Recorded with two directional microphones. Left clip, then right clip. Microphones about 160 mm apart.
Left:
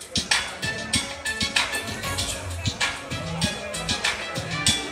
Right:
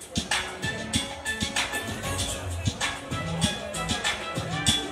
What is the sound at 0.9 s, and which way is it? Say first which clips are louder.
Music: left 3 dB; 15° left (ahead or behind).